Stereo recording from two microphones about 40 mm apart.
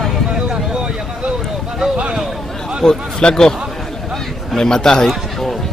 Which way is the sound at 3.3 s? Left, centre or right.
Centre.